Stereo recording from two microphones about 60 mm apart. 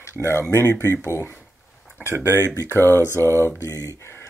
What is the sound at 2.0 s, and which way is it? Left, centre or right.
Speech, right.